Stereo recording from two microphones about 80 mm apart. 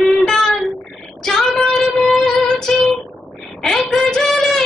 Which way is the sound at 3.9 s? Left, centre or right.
Centre.